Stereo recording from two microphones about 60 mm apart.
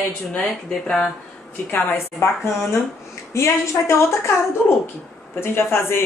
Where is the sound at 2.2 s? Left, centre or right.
Left.